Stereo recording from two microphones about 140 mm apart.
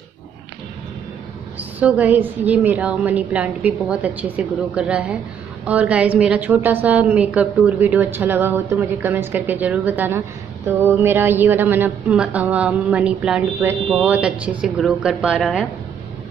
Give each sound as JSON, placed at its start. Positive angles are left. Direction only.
{"t": 1.6, "sound": "a woman's voice", "side_deg": -10}